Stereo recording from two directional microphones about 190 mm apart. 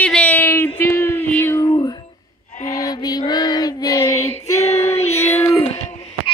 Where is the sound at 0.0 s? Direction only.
5° left (ahead or behind).